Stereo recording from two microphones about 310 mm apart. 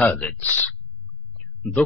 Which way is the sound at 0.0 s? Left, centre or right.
Centre.